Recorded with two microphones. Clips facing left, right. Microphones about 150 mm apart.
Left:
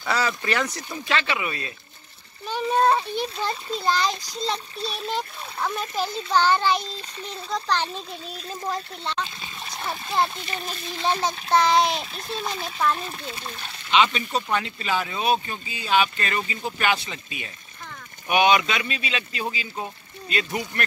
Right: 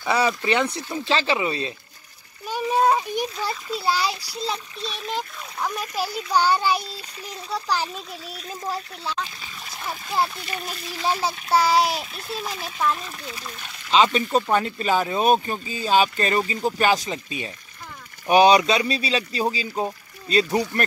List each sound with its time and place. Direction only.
0.0 s speech: 20° right (ahead or behind)
2.4 s a child's voice: 10° right (ahead or behind)
4.7 s a child's voice: 30° left (ahead or behind)
5.0 s a child's voice: centre (ahead or behind)
6.0 s a child's voice: 25° left (ahead or behind)
6.3 s a child's voice: 10° right (ahead or behind)
9.2 s trickle: 25° left (ahead or behind)
10.2 s a child's voice: 25° left (ahead or behind)
11.1 s a child's voice: 10° right (ahead or behind)
12.2 s a child's voice: 30° left (ahead or behind)
13.8 s speech: 40° right (ahead or behind)